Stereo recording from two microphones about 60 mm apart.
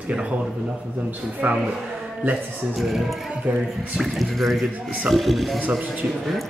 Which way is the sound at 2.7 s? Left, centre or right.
Centre.